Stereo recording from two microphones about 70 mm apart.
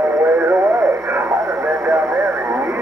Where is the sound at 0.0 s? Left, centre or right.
Right.